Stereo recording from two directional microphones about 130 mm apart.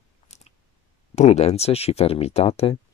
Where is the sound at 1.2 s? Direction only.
60° left (ahead or behind).